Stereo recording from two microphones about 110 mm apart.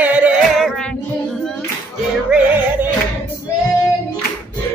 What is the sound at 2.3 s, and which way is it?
Music, 15° right (ahead or behind).